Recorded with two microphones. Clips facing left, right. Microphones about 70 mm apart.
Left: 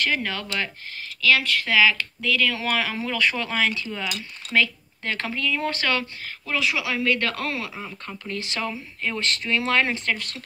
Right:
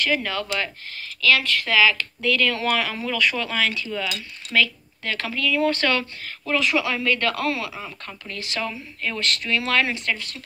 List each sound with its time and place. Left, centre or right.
0.0 s speech: left
2.2 s speech: centre; by 10.1 s left
10.1 s speech: left